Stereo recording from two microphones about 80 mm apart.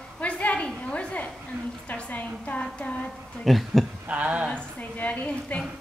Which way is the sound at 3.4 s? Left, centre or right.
Centre.